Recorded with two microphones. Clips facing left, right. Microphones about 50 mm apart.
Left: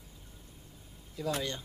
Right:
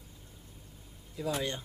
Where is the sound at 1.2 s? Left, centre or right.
Centre.